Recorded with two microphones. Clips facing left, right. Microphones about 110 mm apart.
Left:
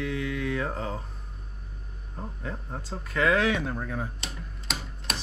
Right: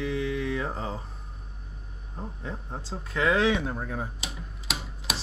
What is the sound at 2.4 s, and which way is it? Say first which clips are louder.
Speech: left 1 dB; 10° right (ahead or behind).